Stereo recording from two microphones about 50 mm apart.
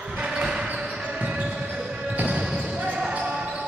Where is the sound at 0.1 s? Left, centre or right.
Right.